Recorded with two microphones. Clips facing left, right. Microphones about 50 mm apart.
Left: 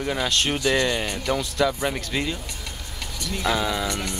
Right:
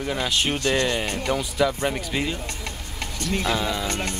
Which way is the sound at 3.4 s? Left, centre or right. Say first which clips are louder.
Left 3 dB; centre.